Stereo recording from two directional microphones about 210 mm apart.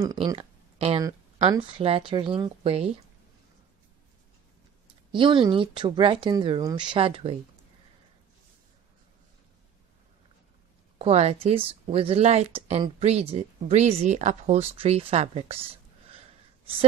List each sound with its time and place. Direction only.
0.0 s a woman's voice: 15° right (ahead or behind)
5.1 s a woman's voice: 25° right (ahead or behind)
11.0 s a woman's voice: 30° right (ahead or behind)